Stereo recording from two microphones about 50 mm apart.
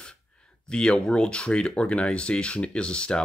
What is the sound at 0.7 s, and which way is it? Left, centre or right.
Speech, centre.